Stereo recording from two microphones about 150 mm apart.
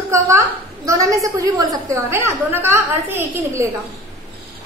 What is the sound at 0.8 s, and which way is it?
A woman's voice, 20° right (ahead or behind).